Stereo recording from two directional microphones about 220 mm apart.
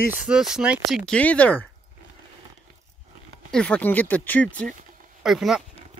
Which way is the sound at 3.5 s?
5° left (ahead or behind).